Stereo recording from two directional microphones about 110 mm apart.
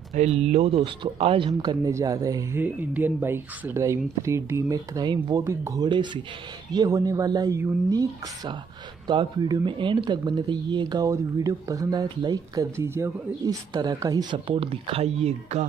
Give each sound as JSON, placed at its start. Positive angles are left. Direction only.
{"t": 0.1, "sound": "speech", "side_deg": -85}
{"t": 1.0, "sound": "speech", "side_deg": -55}
{"t": 1.5, "sound": "speech", "side_deg": -40}
{"t": 1.9, "sound": "speech", "side_deg": -30}
{"t": 2.5, "sound": "speech", "side_deg": -15}
{"t": 5.4, "sound": "speech", "side_deg": -25}
{"t": 5.8, "sound": "speech", "side_deg": -45}
{"t": 12.7, "sound": "speech", "side_deg": -25}
{"t": 14.3, "sound": "speech", "side_deg": -50}